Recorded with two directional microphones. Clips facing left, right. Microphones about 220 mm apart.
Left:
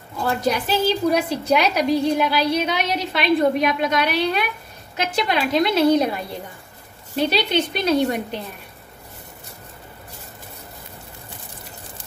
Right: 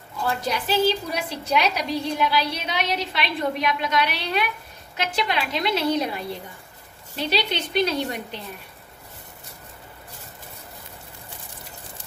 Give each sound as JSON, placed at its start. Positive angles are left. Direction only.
{"t": 0.2, "sound": "a woman's voice", "side_deg": 50}